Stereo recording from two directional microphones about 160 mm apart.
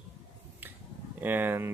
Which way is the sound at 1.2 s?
10° right (ahead or behind).